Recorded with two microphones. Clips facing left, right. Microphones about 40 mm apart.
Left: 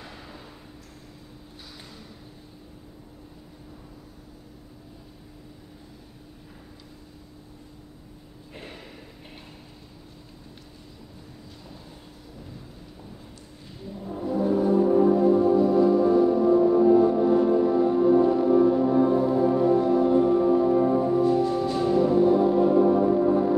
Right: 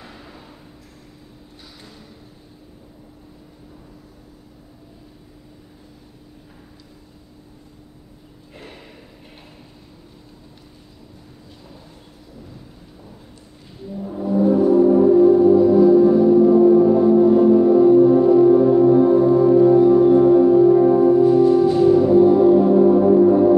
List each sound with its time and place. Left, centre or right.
14.1 s music: centre